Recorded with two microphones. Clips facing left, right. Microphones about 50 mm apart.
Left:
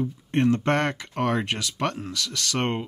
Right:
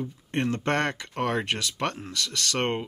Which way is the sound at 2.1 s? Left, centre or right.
Right.